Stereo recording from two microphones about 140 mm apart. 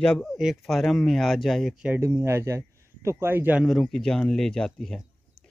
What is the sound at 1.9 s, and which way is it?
Speech, 20° right (ahead or behind).